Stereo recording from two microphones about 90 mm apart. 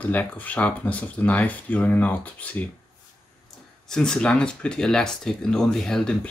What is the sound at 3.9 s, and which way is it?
Speech, 5° left (ahead or behind).